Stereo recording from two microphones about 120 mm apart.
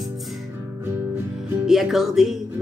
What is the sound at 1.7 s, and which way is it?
Speech, centre (ahead or behind).